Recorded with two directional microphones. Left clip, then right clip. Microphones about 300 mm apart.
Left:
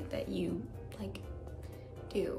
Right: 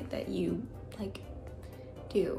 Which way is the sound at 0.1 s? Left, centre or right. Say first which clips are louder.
Right 2 dB; centre.